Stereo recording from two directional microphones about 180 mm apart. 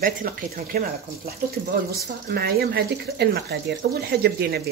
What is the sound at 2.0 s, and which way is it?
Speech, 60° right (ahead or behind).